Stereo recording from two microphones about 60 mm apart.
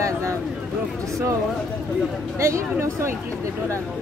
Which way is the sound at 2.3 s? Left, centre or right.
Right.